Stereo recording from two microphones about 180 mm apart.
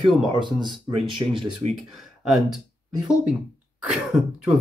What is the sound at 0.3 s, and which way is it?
Speech, 25° right (ahead or behind).